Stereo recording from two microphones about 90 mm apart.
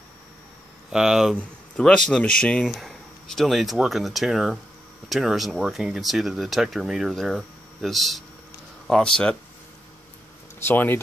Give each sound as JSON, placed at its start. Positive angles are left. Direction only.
{"t": 0.9, "sound": "speech", "side_deg": -5}
{"t": 1.3, "sound": "speech", "side_deg": 10}
{"t": 2.6, "sound": "speech", "side_deg": 0}
{"t": 10.6, "sound": "speech", "side_deg": 25}